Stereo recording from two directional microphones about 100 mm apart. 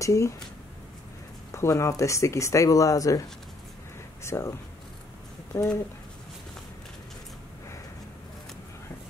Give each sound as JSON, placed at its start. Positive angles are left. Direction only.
{"t": 0.0, "sound": "speech", "side_deg": 30}
{"t": 1.5, "sound": "speech", "side_deg": 30}
{"t": 4.2, "sound": "speech", "side_deg": 25}